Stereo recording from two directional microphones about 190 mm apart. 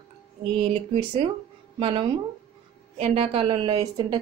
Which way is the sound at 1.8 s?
25° right (ahead or behind).